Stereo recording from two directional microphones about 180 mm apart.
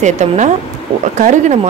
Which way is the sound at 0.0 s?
40° right (ahead or behind).